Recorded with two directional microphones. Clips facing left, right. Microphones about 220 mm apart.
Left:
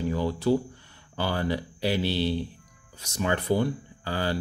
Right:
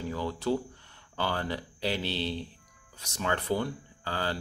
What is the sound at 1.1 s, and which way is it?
Speech, 10° left (ahead or behind).